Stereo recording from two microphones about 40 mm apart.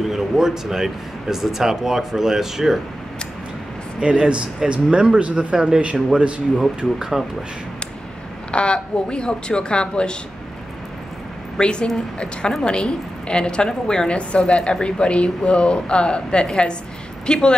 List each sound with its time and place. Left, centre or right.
0.1 s speech: centre
4.0 s speech: right
8.5 s a woman's voice: left
11.5 s a woman's voice: left